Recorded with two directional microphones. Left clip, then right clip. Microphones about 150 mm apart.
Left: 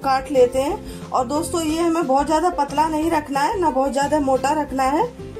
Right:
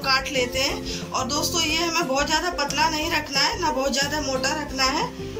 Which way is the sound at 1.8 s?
60° left (ahead or behind).